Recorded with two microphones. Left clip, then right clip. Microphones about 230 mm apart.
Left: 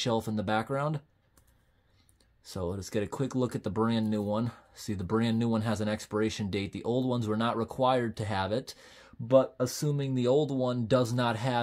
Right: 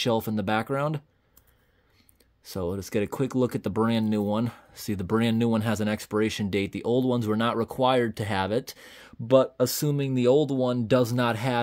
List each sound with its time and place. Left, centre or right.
0.0 s speech: right
2.4 s speech: right